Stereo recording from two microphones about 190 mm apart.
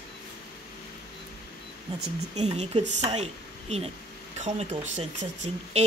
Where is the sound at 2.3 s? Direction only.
35° right (ahead or behind).